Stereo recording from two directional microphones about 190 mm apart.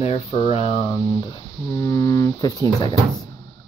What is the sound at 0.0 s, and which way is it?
Speech, 30° left (ahead or behind).